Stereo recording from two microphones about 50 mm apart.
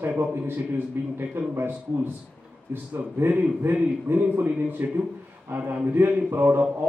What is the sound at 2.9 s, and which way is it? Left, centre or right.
Speech, right.